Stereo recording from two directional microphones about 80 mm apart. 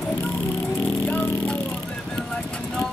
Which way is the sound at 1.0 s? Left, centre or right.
Centre.